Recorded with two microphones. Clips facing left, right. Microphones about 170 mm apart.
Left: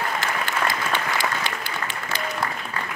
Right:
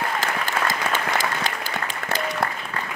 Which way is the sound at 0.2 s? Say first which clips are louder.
Even; 45° right (ahead or behind).